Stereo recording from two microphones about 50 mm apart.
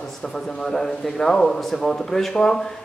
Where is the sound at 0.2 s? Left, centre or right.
Centre.